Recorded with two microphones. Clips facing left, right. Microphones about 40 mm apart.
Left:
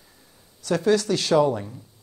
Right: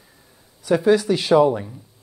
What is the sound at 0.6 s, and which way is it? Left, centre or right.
Speech, centre.